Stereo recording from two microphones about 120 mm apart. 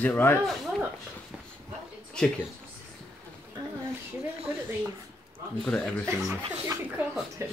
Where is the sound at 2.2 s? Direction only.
5° left (ahead or behind).